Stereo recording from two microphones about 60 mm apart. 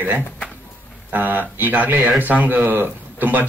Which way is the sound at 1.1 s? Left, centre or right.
Right.